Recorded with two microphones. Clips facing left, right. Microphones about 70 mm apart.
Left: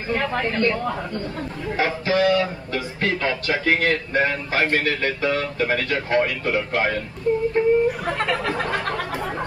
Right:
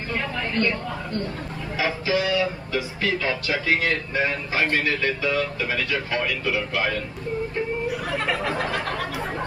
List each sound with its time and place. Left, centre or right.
0.1 s speech: left
1.8 s speech: left
8.7 s a sound: left